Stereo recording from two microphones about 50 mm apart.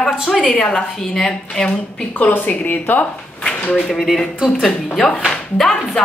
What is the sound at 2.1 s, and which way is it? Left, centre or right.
Speech, left.